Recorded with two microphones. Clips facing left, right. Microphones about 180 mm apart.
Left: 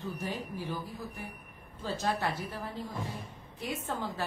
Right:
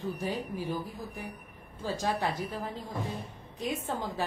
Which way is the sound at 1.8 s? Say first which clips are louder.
Right 1 dB; 15° right (ahead or behind).